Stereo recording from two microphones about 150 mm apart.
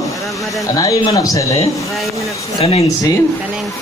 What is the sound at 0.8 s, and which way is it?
Speech, 25° left (ahead or behind).